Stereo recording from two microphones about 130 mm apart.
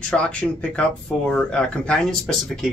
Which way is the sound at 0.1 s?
10° left (ahead or behind).